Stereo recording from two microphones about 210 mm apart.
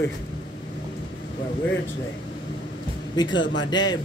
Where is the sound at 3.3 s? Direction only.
60° left (ahead or behind).